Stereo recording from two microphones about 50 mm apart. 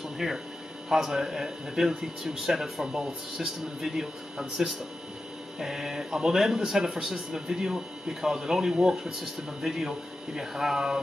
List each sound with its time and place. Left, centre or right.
0.2 s speech: centre